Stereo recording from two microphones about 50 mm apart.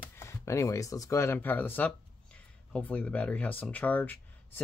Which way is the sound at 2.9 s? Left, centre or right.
Left.